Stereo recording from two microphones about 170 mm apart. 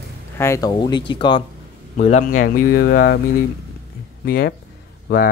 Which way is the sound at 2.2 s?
55° left (ahead or behind).